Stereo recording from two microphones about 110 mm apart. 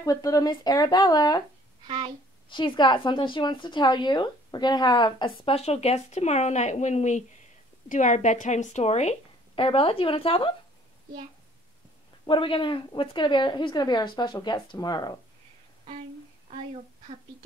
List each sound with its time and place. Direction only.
0.0 s speech: 30° left (ahead or behind)
1.9 s a child's voice: 45° right (ahead or behind)
2.5 s a woman's voice: 45° left (ahead or behind); by 9.1 s 80° left
9.6 s speech: 55° left (ahead or behind)
12.3 s a woman's voice: 50° left (ahead or behind)